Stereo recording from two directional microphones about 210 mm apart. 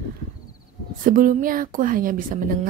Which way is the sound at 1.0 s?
40° right (ahead or behind).